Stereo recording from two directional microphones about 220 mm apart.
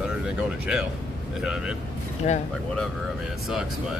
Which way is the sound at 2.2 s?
35° left (ahead or behind).